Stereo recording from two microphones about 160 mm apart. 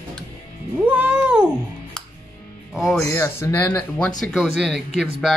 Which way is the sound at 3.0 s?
15° left (ahead or behind).